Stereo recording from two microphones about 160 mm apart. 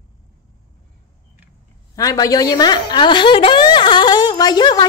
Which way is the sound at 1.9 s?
20° left (ahead or behind).